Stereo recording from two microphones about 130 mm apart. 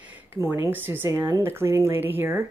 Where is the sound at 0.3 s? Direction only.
15° right (ahead or behind).